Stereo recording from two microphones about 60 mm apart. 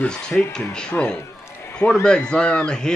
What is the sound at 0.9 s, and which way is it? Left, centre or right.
Speech, left.